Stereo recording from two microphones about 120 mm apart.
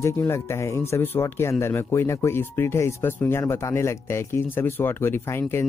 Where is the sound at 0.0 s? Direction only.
20° left (ahead or behind).